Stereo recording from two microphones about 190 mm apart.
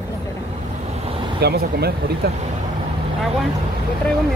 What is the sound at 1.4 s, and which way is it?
Speech, 55° right (ahead or behind).